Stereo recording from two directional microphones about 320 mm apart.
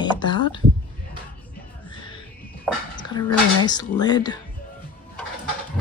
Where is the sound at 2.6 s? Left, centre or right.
Centre.